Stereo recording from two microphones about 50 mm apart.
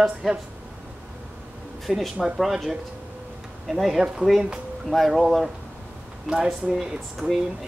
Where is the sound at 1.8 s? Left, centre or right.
Centre.